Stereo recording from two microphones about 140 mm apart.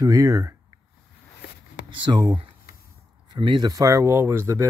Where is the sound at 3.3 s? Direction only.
35° right (ahead or behind); by 4.6 s 20° right (ahead or behind).